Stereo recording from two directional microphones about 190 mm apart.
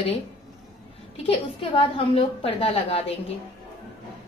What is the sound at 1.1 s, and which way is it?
A woman's voice, 30° left (ahead or behind).